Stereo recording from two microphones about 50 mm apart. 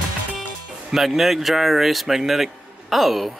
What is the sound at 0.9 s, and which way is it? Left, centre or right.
Speech, centre.